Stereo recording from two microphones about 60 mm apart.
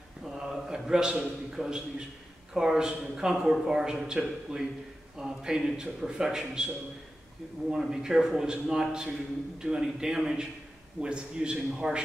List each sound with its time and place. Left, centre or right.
0.5 s a man's voice: centre
7.7 s a man's voice: centre